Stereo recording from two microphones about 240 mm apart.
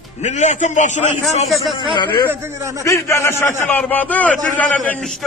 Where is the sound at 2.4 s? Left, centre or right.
Centre.